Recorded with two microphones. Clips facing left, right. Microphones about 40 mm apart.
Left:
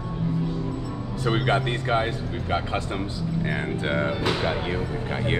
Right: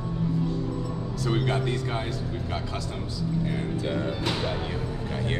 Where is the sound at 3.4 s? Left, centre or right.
Left.